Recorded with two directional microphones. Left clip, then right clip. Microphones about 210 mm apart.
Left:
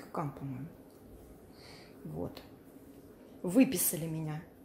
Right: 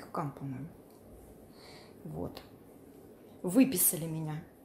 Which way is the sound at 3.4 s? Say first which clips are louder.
Even; centre (ahead or behind).